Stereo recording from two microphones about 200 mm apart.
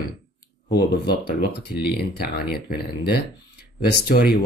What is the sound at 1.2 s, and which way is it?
Speech, 55° left (ahead or behind).